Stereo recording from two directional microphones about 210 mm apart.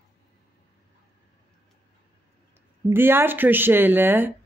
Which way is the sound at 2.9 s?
10° right (ahead or behind).